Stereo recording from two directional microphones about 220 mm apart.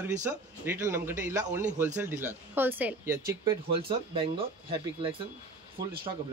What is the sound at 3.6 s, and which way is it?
Speech, 25° right (ahead or behind).